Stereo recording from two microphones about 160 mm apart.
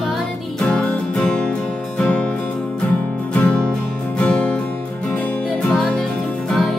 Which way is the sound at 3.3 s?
10° left (ahead or behind).